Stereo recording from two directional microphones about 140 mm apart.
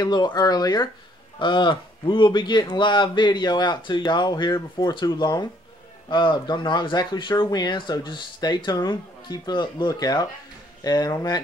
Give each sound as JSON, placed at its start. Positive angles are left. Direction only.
{"t": 0.0, "sound": "speech", "side_deg": 30}